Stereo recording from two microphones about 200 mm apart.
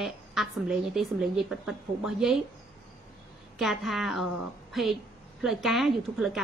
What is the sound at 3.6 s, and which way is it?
A woman's voice, centre (ahead or behind).